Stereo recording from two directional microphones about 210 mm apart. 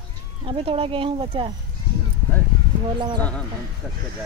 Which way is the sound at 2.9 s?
20° right (ahead or behind).